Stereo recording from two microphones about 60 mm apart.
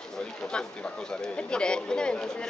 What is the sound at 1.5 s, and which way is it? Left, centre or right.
Speech, centre.